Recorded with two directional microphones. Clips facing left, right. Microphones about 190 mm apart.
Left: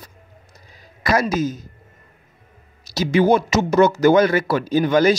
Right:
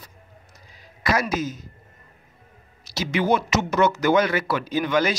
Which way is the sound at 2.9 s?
35° left (ahead or behind).